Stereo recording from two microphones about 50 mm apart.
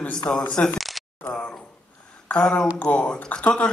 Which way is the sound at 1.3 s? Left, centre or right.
Left.